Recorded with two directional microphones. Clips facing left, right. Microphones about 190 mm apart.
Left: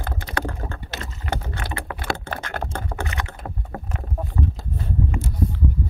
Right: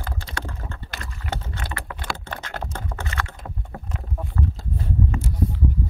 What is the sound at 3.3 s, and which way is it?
Rowboat, 60° left (ahead or behind).